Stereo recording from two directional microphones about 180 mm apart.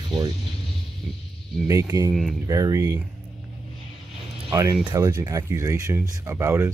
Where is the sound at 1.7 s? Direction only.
20° right (ahead or behind).